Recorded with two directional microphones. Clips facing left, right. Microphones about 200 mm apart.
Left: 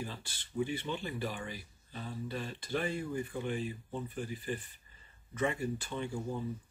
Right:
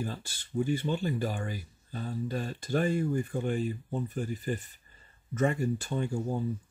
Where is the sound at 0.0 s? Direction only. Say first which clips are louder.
Right 6 dB; 45° right (ahead or behind).